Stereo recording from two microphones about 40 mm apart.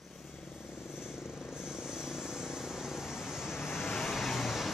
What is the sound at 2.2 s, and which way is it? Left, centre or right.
Vehicle, centre.